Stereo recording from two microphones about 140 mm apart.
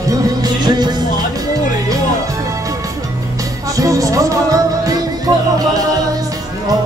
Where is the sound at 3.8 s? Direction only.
25° right (ahead or behind).